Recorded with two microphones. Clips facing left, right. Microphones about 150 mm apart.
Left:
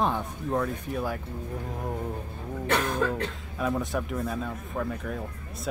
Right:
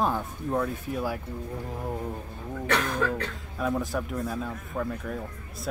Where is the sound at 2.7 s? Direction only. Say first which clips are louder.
Left 1 dB; 25° left (ahead or behind).